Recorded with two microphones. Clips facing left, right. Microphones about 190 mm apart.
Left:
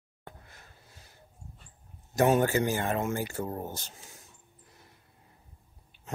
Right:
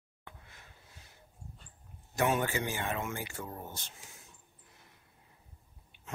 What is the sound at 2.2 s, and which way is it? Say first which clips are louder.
Speech: left 7 dB; 40° left (ahead or behind).